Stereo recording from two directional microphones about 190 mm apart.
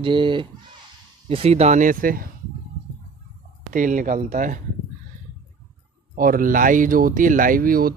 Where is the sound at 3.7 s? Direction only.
45° right (ahead or behind).